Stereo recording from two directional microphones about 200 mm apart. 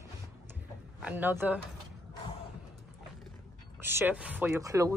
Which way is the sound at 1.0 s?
10° right (ahead or behind).